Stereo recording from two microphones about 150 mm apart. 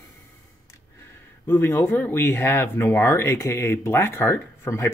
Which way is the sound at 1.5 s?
15° left (ahead or behind).